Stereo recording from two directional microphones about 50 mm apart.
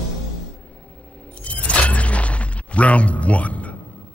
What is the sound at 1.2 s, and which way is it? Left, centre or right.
Music, left.